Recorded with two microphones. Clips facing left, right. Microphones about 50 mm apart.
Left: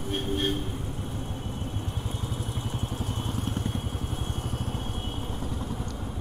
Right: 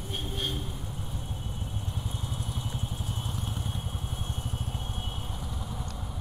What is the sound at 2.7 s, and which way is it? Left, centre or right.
Vehicle, left.